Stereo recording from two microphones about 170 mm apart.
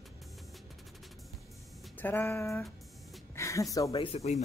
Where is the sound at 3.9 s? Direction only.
35° left (ahead or behind).